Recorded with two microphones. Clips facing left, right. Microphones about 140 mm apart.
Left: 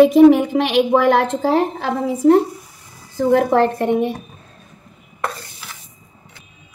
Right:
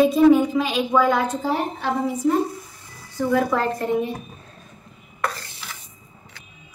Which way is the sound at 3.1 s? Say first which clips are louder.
Left 6 dB; 70° left (ahead or behind).